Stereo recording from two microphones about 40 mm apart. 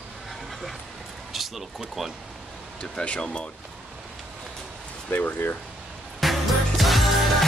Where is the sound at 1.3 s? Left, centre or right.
Centre.